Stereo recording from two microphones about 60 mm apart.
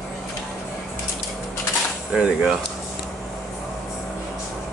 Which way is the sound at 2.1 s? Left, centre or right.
Centre.